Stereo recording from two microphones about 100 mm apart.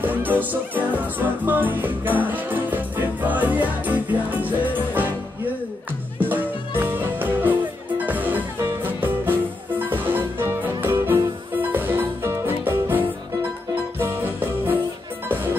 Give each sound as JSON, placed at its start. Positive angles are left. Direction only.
{"t": 0.0, "sound": "music", "side_deg": -20}
{"t": 6.1, "sound": "music", "side_deg": -20}